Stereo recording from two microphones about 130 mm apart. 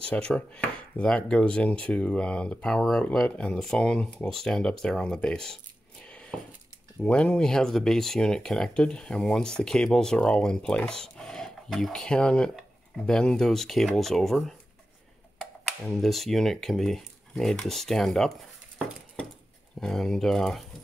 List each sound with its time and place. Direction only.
0.0 s speech: 10° left (ahead or behind)
6.0 s coin: 10° left (ahead or behind)
7.0 s speech: 5° left (ahead or behind)
19.8 s speech: 5° left (ahead or behind)